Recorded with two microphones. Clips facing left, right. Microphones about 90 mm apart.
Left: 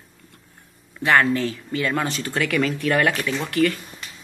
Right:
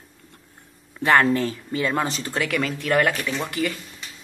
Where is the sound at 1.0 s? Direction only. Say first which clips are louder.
Even; 35° right (ahead or behind).